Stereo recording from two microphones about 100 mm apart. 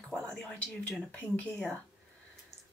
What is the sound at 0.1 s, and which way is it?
Speech, 10° left (ahead or behind).